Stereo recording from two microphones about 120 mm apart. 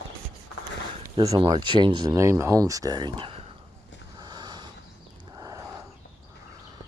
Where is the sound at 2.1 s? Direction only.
25° right (ahead or behind); by 3.4 s 45° right (ahead or behind).